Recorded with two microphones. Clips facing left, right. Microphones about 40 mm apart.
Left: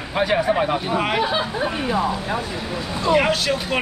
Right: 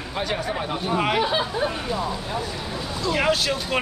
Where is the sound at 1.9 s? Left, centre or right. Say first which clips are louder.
Left 5 dB; left.